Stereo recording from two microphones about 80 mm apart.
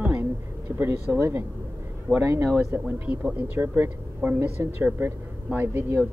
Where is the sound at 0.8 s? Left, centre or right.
Right.